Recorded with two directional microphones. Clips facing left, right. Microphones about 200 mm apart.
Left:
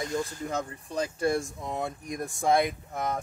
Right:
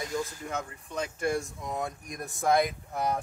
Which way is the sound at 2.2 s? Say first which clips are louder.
Left 1 dB; centre (ahead or behind).